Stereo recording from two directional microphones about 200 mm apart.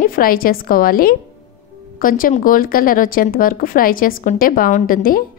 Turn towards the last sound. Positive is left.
turn(degrees=45)  # may be behind; listen again after turning